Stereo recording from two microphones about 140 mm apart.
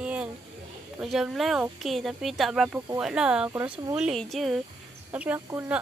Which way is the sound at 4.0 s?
Centre (ahead or behind).